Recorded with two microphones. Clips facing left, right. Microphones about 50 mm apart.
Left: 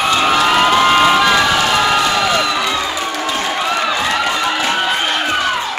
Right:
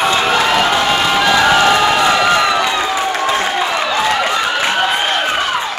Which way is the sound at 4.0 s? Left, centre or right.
Centre.